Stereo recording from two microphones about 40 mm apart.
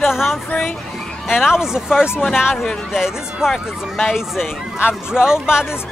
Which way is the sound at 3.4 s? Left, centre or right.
Centre.